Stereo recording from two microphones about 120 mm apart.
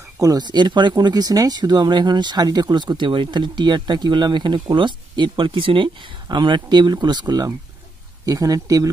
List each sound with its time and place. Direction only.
0.2 s speech: 35° right (ahead or behind)